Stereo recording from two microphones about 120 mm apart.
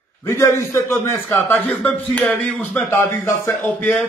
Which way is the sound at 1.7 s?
10° left (ahead or behind).